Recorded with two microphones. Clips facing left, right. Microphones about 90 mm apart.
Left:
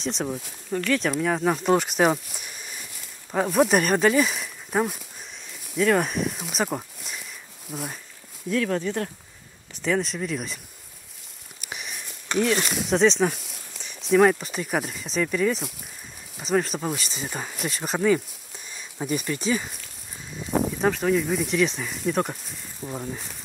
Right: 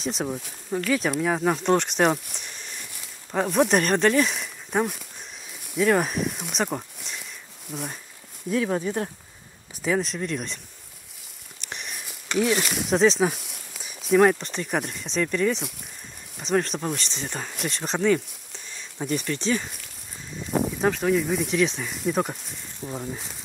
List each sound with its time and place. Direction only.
0.0 s speech: 5° right (ahead or behind)
5.8 s a sound: centre (ahead or behind)
7.7 s speech: centre (ahead or behind)
8.5 s speech: 15° right (ahead or behind)
9.8 s speech: 5° right (ahead or behind)
11.6 s a sound: 5° left (ahead or behind)
12.4 s speech: 5° right (ahead or behind)